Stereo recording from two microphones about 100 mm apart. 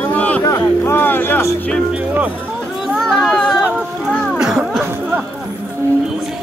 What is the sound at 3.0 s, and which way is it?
Children playing, 5° left (ahead or behind).